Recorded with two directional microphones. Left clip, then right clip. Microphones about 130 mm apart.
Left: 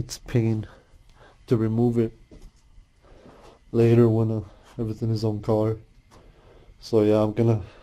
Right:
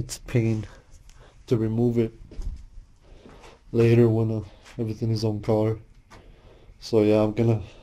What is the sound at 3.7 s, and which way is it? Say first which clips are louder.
Speech: left 1 dB; 5° left (ahead or behind).